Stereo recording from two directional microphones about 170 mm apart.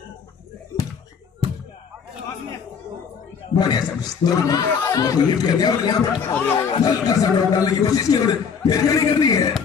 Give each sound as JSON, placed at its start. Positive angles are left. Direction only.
{"t": 3.5, "sound": "a man's voice", "side_deg": 25}